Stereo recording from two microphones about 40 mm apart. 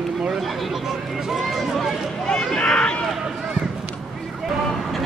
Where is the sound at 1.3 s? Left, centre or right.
Centre.